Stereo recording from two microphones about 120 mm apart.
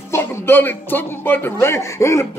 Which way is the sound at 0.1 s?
15° left (ahead or behind).